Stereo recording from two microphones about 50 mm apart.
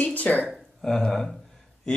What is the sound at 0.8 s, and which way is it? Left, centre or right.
Speech, centre.